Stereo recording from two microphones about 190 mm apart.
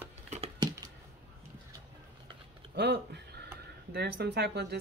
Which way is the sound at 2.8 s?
65° right (ahead or behind).